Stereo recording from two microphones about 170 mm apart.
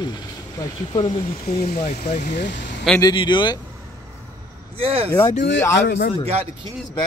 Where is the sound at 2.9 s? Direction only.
25° left (ahead or behind).